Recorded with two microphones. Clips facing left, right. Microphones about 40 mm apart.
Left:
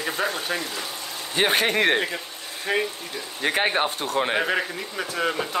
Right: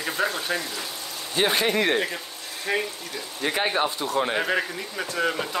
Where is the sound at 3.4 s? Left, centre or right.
Left.